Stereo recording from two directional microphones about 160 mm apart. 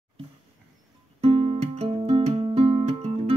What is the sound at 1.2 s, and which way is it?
Music, 40° right (ahead or behind).